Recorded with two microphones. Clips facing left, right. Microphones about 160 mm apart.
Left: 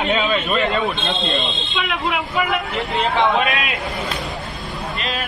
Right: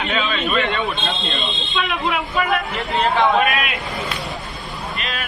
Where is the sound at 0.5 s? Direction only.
40° left (ahead or behind).